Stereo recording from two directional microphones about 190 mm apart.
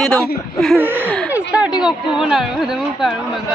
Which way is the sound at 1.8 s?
5° right (ahead or behind).